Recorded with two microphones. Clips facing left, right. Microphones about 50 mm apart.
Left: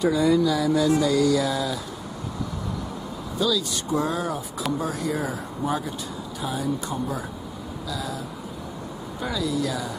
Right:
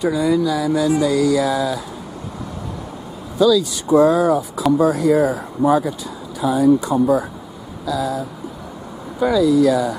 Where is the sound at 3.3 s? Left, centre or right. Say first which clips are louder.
Right 10 dB; centre.